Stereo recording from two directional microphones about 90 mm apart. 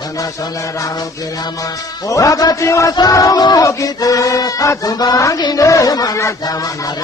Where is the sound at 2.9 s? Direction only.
45° left (ahead or behind).